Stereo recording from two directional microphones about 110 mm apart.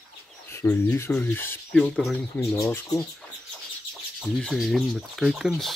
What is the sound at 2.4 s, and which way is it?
Speech, 30° left (ahead or behind).